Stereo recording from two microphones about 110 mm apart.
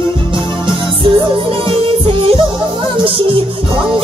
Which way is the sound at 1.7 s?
55° right (ahead or behind).